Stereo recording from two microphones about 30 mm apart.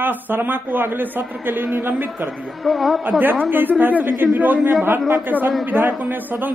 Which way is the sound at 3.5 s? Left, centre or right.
Right.